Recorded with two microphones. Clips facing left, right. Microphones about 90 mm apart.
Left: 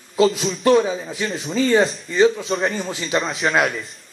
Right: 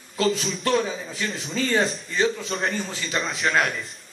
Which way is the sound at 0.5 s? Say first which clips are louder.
Left 8 dB; centre (ahead or behind).